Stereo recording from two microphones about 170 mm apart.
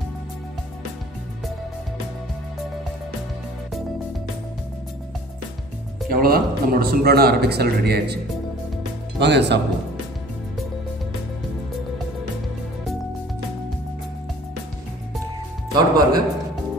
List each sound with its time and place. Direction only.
6.0 s speech: 60° right (ahead or behind)
9.2 s speech: 90° right
15.7 s speech: 25° right (ahead or behind)